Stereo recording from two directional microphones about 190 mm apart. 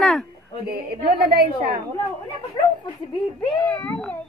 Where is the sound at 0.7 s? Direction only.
55° right (ahead or behind).